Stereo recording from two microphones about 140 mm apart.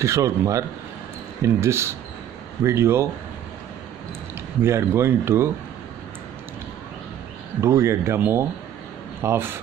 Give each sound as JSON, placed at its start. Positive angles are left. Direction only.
{"t": 0.0, "sound": "speech", "side_deg": -20}
{"t": 4.6, "sound": "speech", "side_deg": -20}
{"t": 7.6, "sound": "speech", "side_deg": -20}